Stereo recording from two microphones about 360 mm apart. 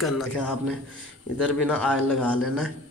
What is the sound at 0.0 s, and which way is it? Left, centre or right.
A man's voice, centre.